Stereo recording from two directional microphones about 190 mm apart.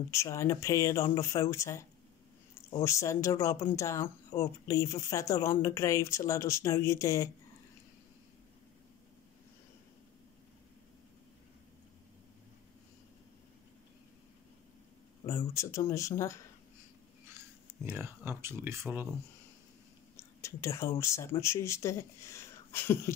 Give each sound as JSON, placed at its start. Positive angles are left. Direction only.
{"t": 0.1, "sound": "speech", "side_deg": 15}
{"t": 15.3, "sound": "speech", "side_deg": 15}
{"t": 17.8, "sound": "speech", "side_deg": -10}
{"t": 20.2, "sound": "whispering", "side_deg": 15}
{"t": 21.0, "sound": "speech", "side_deg": 15}